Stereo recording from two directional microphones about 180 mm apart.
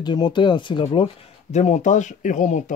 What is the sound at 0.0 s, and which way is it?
Speech, 25° left (ahead or behind).